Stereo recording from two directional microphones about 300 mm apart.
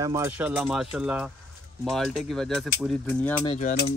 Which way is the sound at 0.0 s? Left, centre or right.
Centre.